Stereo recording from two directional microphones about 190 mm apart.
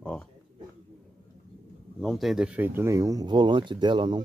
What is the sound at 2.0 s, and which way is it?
Speech, centre (ahead or behind).